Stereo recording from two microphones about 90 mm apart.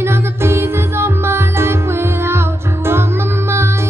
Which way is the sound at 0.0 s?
25° right (ahead or behind).